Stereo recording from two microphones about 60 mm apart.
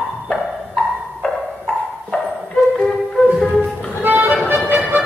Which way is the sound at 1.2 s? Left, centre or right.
Centre.